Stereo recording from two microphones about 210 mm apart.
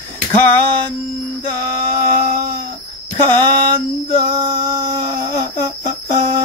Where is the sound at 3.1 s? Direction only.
20° right (ahead or behind).